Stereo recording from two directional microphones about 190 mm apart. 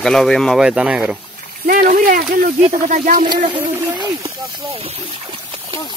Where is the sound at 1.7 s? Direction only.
45° right (ahead or behind).